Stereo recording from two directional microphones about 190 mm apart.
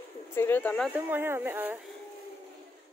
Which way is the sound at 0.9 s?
10° right (ahead or behind).